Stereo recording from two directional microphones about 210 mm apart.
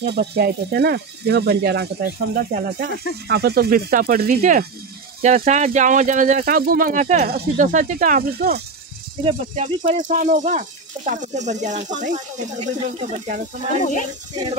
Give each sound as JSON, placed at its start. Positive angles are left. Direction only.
{"t": 0.1, "sound": "speech", "side_deg": -50}
{"t": 9.2, "sound": "speech", "side_deg": -35}